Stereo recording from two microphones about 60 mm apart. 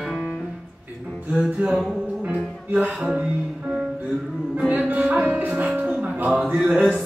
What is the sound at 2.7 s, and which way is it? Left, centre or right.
Music, right.